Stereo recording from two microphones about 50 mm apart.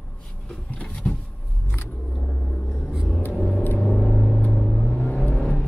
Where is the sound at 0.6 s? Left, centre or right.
Left.